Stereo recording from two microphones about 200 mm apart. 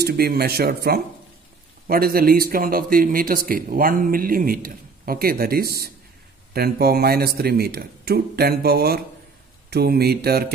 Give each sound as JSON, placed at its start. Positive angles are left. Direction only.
{"t": 0.0, "sound": "speech", "side_deg": -55}